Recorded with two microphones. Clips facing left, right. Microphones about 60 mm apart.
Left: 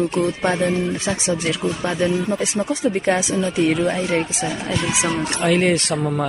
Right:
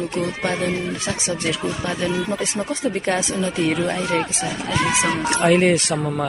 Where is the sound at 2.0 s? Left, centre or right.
Right.